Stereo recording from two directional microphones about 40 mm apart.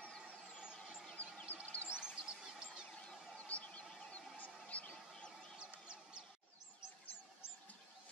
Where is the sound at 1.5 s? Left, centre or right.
Left.